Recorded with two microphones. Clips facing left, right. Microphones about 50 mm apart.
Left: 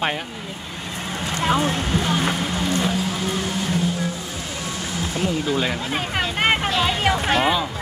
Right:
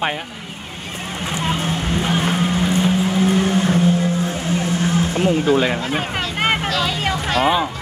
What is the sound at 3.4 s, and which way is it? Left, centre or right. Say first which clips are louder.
Vehicle: right 7 dB; right.